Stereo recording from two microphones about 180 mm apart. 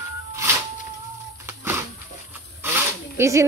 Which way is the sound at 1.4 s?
10° right (ahead or behind).